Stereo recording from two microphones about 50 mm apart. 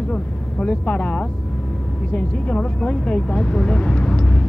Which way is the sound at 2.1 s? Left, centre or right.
Left.